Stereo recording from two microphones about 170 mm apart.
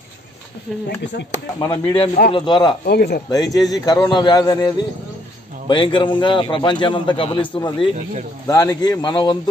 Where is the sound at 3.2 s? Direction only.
20° left (ahead or behind).